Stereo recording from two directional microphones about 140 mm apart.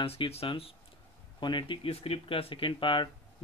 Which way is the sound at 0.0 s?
45° left (ahead or behind).